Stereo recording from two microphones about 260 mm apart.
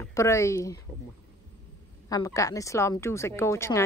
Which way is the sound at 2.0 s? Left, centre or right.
Centre.